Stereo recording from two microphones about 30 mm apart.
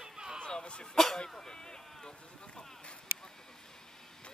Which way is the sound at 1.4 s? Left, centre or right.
Left.